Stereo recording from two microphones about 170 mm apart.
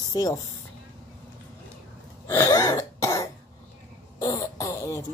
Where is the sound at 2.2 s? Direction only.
20° left (ahead or behind).